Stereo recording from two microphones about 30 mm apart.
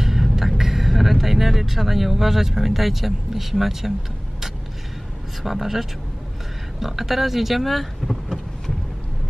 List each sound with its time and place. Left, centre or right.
0.0 s speech: centre
5.4 s speech: centre